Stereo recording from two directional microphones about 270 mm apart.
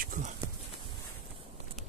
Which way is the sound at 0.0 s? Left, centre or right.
Right.